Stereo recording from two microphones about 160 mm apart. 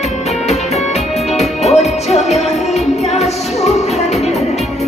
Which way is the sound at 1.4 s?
40° left (ahead or behind).